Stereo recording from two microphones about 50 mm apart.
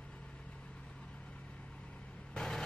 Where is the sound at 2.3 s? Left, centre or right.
Centre.